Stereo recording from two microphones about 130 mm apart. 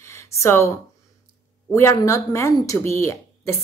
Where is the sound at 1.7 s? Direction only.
20° left (ahead or behind).